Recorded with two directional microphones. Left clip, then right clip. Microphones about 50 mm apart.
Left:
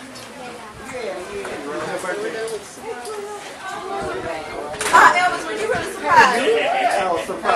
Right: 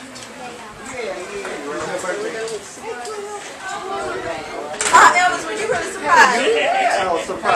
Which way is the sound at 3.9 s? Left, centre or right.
Centre.